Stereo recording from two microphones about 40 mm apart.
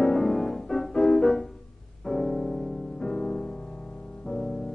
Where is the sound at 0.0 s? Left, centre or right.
Centre.